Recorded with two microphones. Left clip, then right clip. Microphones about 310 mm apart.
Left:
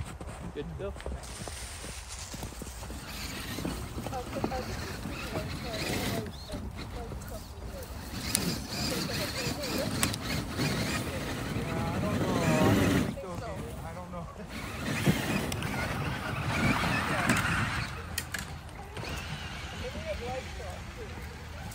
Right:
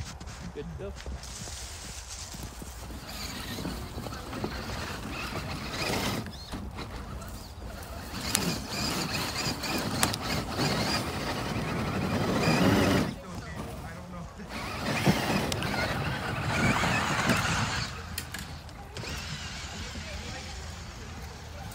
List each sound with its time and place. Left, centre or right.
3.2 s vehicle: centre
4.6 s mechanisms: centre
8.1 s a sound: centre
8.5 s mechanisms: centre
8.8 s vehicle: centre
14.5 s neigh: right
18.9 s vehicle: centre